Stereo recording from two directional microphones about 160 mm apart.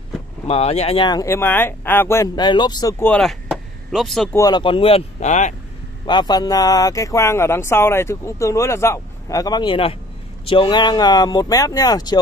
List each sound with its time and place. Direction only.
0.5 s speech: 40° left (ahead or behind)
1.2 s speech: 15° left (ahead or behind)
2.3 s speech: 25° left (ahead or behind)
3.0 s speech: 5° left (ahead or behind)
4.3 s speech: 25° left (ahead or behind); by 5.5 s 45° left (ahead or behind)
6.0 s speech: 25° left (ahead or behind)